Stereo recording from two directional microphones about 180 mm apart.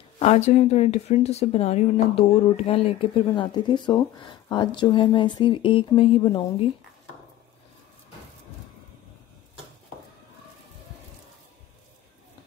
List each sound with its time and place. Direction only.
0.2 s speech: 35° left (ahead or behind)